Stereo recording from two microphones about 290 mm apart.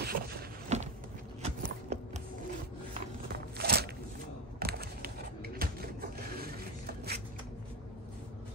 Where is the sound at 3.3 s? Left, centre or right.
Right.